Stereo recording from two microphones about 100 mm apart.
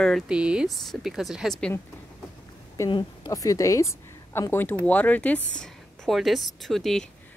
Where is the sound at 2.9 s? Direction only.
50° left (ahead or behind).